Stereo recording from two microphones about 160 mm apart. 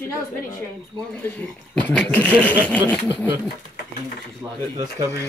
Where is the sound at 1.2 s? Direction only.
10° left (ahead or behind).